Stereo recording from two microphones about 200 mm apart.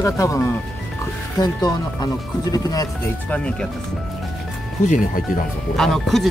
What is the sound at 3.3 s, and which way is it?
Speech, 5° left (ahead or behind).